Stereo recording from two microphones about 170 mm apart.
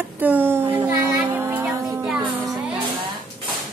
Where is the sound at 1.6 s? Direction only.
5° right (ahead or behind).